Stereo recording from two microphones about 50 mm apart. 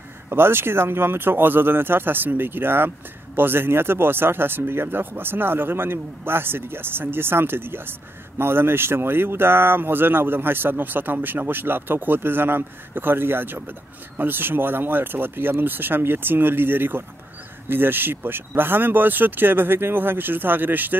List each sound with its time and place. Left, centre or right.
0.3 s speech: right